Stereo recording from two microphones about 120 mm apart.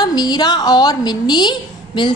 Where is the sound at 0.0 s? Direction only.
35° left (ahead or behind).